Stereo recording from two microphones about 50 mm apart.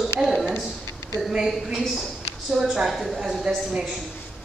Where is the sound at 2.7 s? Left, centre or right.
Centre.